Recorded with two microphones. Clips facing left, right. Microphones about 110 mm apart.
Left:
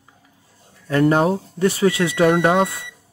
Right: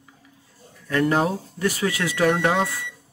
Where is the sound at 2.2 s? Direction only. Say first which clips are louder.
Left 4 dB; 50° left (ahead or behind).